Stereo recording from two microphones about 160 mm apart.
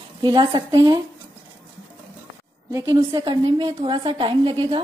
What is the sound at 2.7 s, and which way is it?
A woman's voice, 20° right (ahead or behind).